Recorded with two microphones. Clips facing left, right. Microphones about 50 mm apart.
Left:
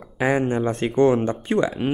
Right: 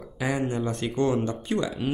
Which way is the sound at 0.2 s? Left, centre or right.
Left.